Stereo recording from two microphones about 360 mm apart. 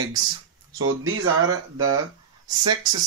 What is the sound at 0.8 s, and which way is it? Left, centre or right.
Speech, right.